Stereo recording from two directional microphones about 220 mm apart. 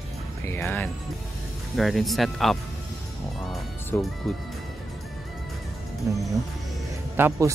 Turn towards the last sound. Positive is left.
turn(degrees=-10)  # may be behind; listen again after turning